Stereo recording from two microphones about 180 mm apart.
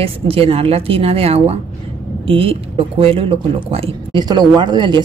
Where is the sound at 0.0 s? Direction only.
30° right (ahead or behind).